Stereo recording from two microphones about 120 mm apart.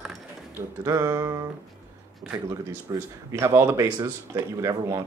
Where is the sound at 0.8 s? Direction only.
25° right (ahead or behind).